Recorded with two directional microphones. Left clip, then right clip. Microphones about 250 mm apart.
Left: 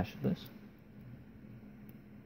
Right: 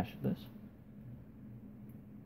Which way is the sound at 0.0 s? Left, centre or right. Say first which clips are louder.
Left 2 dB; centre.